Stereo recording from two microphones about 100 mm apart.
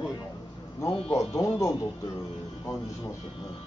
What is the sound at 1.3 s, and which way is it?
Speech, 30° left (ahead or behind).